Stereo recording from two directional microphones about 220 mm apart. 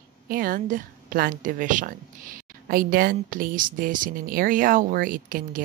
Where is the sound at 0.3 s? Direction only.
40° right (ahead or behind).